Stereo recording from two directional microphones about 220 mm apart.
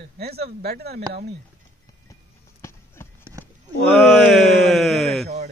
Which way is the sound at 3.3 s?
15° right (ahead or behind).